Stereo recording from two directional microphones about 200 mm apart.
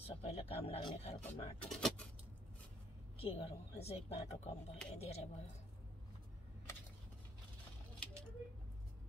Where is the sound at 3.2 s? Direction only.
30° left (ahead or behind).